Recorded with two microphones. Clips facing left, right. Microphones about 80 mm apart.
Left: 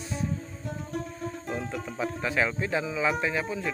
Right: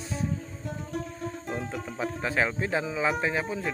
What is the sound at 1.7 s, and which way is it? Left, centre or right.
Speech, centre.